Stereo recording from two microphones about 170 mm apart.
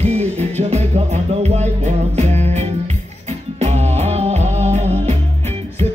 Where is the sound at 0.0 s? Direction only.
40° right (ahead or behind).